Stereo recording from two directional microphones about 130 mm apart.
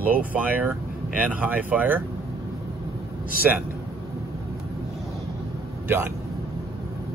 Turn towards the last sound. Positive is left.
turn(degrees=-15)  # may be behind; listen again after turning